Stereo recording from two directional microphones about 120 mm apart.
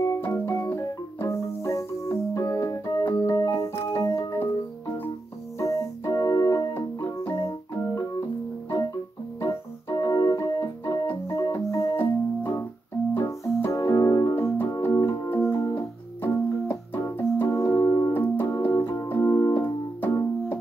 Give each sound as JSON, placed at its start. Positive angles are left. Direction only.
{"t": 0.0, "sound": "music", "side_deg": 25}
{"t": 3.1, "sound": "keyboard", "side_deg": 20}
{"t": 3.4, "sound": "music", "side_deg": 25}
{"t": 5.6, "sound": "keyboard", "side_deg": 25}
{"t": 9.4, "sound": "organ", "side_deg": 20}
{"t": 11.1, "sound": "keyboard", "side_deg": 20}
{"t": 18.1, "sound": "keyboard", "side_deg": 15}